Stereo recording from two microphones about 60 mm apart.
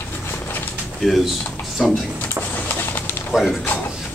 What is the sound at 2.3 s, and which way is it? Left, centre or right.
Bird, left.